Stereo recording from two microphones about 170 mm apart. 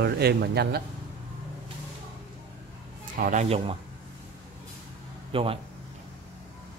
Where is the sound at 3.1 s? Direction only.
45° right (ahead or behind).